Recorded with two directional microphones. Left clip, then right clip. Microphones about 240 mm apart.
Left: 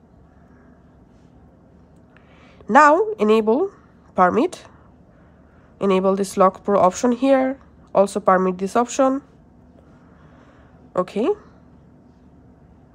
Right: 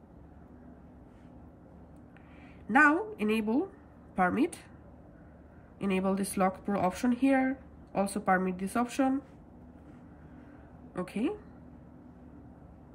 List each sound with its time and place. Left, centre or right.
2.7 s speech: centre
5.8 s speech: centre
10.9 s a woman's voice: centre